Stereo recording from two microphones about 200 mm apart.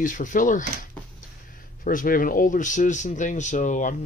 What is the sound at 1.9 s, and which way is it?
Speech, 45° left (ahead or behind).